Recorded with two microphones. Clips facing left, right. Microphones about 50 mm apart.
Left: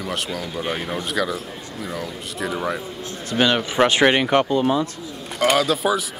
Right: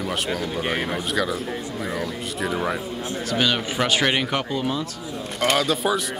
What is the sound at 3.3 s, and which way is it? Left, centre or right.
Speech, centre.